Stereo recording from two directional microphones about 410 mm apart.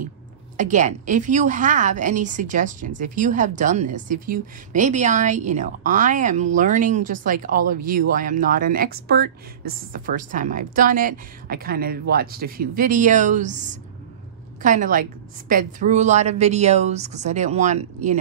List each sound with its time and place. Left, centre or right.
0.6 s a woman's voice: centre